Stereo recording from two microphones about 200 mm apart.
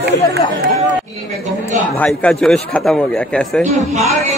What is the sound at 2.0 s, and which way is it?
Speech, 5° left (ahead or behind).